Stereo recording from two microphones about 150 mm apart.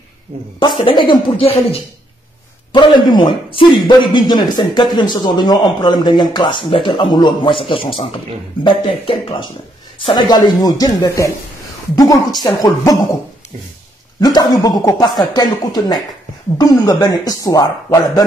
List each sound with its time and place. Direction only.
0.6 s a man's voice: 35° left (ahead or behind)
14.2 s speech: 25° left (ahead or behind)